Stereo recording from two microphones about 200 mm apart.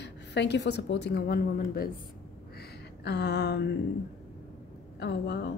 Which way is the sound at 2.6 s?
55° left (ahead or behind).